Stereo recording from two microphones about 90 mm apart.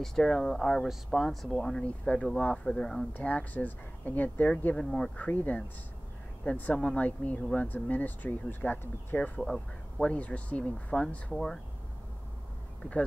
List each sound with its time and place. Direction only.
0.0 s speech: 5° left (ahead or behind)
3.1 s speech: 20° left (ahead or behind)
9.4 s speech: 5° left (ahead or behind)
12.8 s speech: 20° left (ahead or behind)